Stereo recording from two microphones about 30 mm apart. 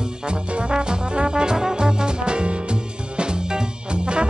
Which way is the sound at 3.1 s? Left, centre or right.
Right.